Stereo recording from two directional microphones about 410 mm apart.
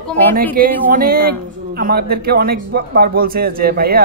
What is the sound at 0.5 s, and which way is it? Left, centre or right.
A man's voice, right.